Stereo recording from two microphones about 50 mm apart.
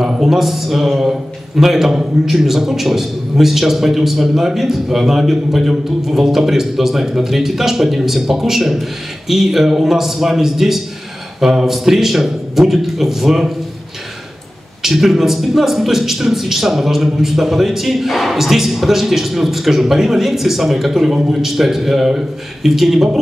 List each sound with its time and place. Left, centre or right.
0.0 s a man's voice: centre
14.8 s a man's voice: centre